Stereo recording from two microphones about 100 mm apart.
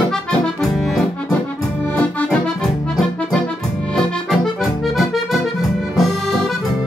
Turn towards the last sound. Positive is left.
turn(degrees=0)  # may be behind; listen again after turning